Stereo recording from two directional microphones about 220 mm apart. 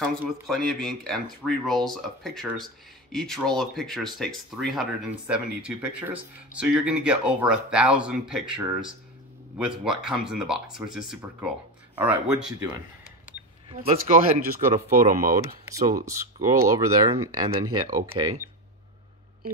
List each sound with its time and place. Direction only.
0.2 s speech: centre (ahead or behind)
13.7 s speech: 30° right (ahead or behind)
15.3 s speech: 15° right (ahead or behind)